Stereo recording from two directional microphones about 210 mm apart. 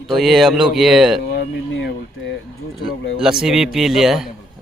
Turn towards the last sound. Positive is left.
turn(degrees=0)  # may be behind; listen again after turning